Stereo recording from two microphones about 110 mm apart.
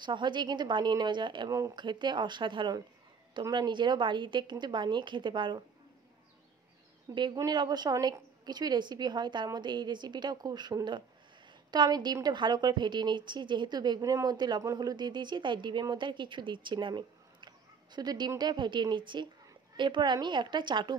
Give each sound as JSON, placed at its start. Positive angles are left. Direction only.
{"t": 0.0, "sound": "a woman's voice", "side_deg": -45}
{"t": 7.3, "sound": "a woman's voice", "side_deg": -40}